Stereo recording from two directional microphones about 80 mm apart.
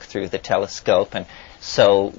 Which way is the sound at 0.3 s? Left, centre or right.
Left.